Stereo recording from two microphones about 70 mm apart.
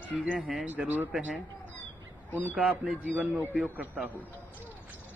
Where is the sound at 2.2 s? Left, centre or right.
Left.